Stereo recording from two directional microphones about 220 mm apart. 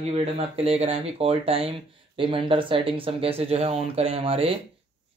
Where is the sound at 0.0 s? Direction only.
25° right (ahead or behind).